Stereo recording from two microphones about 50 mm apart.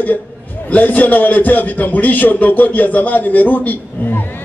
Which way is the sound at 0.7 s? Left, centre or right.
Left.